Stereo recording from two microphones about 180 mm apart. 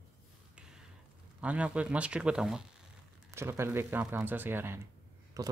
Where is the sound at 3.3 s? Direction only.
15° right (ahead or behind).